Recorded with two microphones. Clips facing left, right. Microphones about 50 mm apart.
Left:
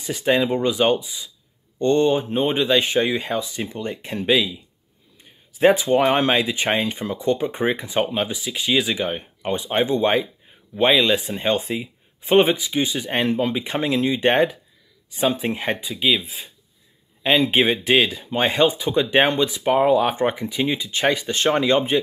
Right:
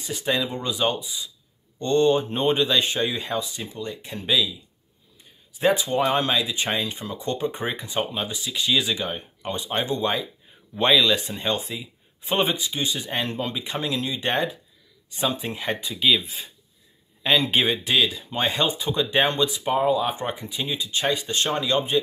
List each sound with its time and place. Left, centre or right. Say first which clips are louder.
0.0 s speech: left 6 dB; left
5.6 s speech: left 5 dB; left
11.2 s speech: left 5 dB; left
14.3 s speech: left 6 dB; left
15.8 s speech: right 3 dB; centre
17.6 s speech: left 4 dB; left